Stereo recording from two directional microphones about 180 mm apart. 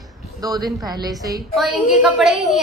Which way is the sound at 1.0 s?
20° right (ahead or behind).